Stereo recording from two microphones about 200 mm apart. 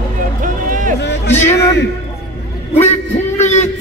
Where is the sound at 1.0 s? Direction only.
60° left (ahead or behind).